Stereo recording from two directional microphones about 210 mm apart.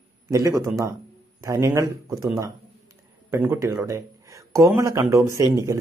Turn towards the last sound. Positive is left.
turn(degrees=-15)  # may be behind; listen again after turning